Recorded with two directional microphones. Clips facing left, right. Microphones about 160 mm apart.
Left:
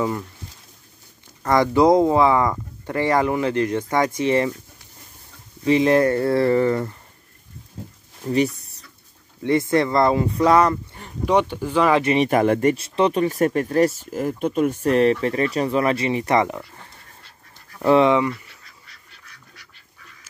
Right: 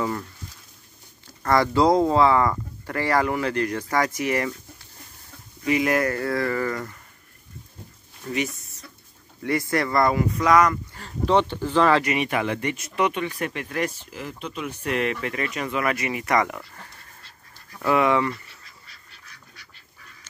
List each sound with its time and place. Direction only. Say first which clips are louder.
1.4 s speech: left 3 dB; 15° left (ahead or behind)
5.6 s speech: left 6 dB; 30° left (ahead or behind)
8.3 s speech: left 7 dB; 35° left (ahead or behind)
9.4 s speech: left 5 dB; 25° left (ahead or behind)
11.0 s speech: left 1 dB; 15° left (ahead or behind)
12.0 s speech: left 6 dB; 30° left (ahead or behind)
12.3 s speech: left 8 dB; 45° left (ahead or behind)
12.7 s speech: left 5 dB; 30° left (ahead or behind)